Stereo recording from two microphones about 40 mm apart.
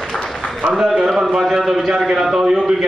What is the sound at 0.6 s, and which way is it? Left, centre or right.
A man's voice, centre.